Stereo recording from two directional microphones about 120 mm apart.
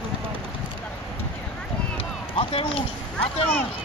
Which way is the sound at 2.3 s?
55° left (ahead or behind).